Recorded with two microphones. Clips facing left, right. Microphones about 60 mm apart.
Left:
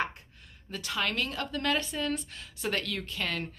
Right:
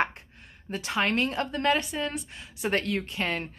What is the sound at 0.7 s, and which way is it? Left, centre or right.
A woman's voice, right.